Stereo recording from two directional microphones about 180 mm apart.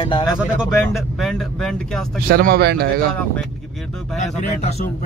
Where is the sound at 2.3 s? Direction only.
60° right (ahead or behind).